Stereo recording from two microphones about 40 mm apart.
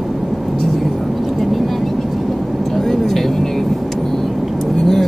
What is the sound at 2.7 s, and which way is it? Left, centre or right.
Vehicle, centre.